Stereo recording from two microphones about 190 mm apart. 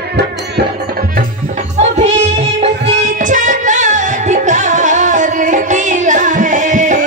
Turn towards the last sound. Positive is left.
turn(degrees=-40)  # may be behind; listen again after turning